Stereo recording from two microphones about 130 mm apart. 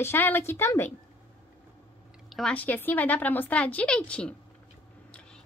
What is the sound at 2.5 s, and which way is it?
A woman's voice, 15° left (ahead or behind).